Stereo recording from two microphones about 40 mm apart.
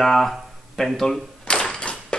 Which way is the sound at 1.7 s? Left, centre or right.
Left.